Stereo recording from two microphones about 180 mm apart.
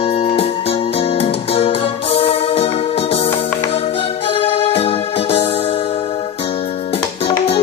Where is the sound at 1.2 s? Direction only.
35° left (ahead or behind).